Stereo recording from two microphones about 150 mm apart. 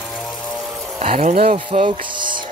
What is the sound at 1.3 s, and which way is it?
Speech, 60° right (ahead or behind).